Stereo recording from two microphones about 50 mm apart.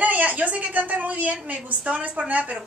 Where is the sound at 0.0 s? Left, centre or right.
Right.